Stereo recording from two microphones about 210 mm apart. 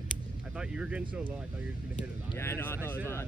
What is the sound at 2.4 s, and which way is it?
Speech, 10° left (ahead or behind).